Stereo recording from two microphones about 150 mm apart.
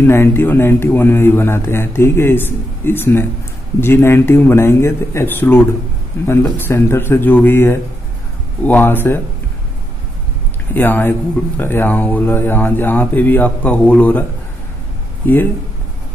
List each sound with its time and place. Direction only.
0.0 s speech: 15° left (ahead or behind)
10.7 s speech: 15° left (ahead or behind)